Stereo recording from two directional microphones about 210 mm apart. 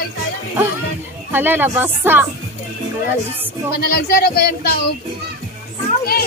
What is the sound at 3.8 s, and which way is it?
Speech, 45° left (ahead or behind).